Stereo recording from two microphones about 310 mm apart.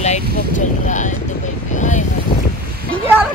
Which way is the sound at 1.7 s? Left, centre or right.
Left.